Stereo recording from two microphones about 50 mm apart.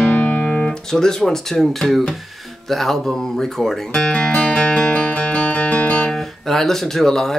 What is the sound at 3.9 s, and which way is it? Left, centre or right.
Music, left.